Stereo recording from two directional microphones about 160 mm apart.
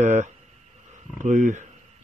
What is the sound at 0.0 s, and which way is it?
Speech, 45° right (ahead or behind).